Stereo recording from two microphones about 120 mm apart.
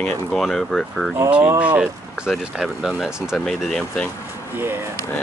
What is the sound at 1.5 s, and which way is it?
Speech, 10° right (ahead or behind).